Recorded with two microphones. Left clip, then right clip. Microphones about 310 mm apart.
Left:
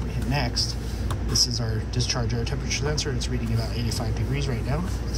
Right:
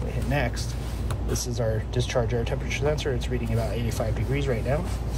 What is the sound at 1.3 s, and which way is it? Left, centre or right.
Speech, centre.